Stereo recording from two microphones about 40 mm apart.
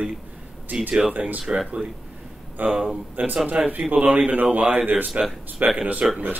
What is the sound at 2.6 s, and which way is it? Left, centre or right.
A man's voice, right.